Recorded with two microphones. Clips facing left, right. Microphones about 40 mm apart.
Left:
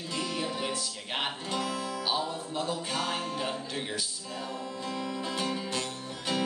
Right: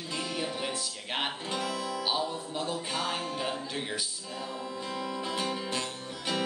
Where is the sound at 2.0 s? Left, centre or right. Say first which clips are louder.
Even; centre.